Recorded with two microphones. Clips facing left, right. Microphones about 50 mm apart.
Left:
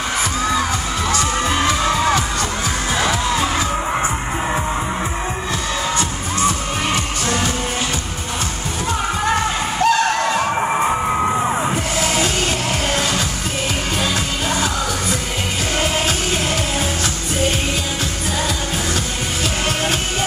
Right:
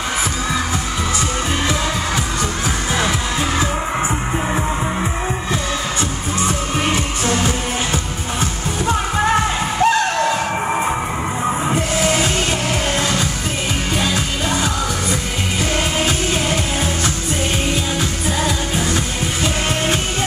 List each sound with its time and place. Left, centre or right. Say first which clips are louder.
9.8 s music: right 1 dB; right
11.6 s music: right 2 dB; centre
13.9 s music: right 1 dB; centre